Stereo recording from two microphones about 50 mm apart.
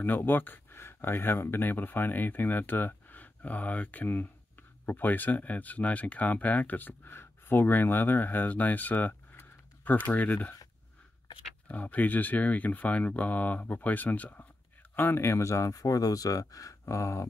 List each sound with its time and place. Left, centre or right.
0.0 s speech: left
7.1 s speech: left
11.7 s speech: left
15.0 s speech: left
16.8 s a sound: left